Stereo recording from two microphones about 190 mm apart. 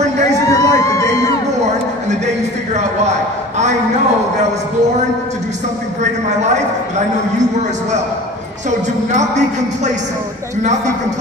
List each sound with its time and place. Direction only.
0.5 s crowd: 15° left (ahead or behind)
2.0 s a sound: 35° right (ahead or behind)
8.6 s a woman's voice: 40° right (ahead or behind)